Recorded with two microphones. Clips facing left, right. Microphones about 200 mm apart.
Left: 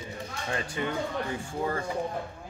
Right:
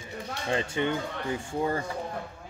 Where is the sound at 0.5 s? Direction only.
25° right (ahead or behind).